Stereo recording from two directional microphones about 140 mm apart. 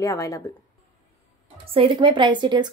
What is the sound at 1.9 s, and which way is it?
Speech, 35° right (ahead or behind).